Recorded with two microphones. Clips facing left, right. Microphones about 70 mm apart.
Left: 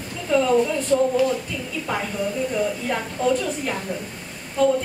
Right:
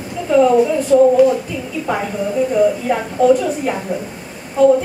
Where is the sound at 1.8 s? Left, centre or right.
Centre.